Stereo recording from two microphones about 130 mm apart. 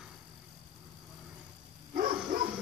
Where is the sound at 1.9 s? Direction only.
90° right.